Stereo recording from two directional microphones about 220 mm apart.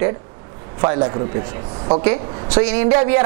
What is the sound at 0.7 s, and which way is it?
A man's voice, 20° right (ahead or behind).